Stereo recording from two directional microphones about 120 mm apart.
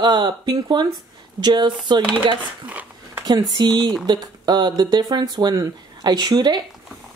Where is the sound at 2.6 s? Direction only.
10° right (ahead or behind).